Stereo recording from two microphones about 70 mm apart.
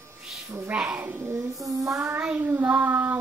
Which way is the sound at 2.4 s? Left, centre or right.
Right.